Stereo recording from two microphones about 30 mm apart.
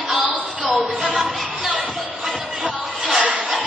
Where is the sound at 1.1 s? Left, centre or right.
Right.